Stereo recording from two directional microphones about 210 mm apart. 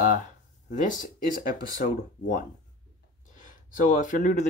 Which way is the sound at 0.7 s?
40° left (ahead or behind).